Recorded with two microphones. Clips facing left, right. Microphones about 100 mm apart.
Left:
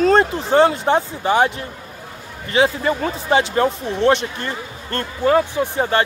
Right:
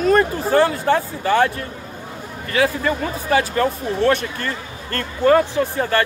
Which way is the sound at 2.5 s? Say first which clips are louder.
Left 2 dB; 25° left (ahead or behind).